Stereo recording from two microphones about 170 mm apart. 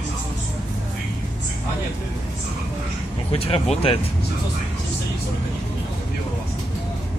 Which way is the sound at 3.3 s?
35° left (ahead or behind).